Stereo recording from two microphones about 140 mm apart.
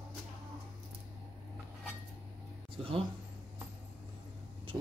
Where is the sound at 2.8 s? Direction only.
40° right (ahead or behind).